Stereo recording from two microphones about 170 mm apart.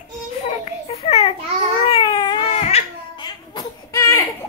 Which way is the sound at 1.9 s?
25° left (ahead or behind).